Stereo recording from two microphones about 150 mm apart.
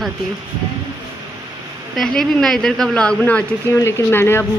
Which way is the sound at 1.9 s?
5° left (ahead or behind).